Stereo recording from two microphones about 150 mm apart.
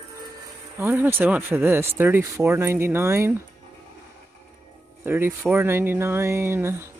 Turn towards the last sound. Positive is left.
turn(degrees=-15)  # may be behind; listen again after turning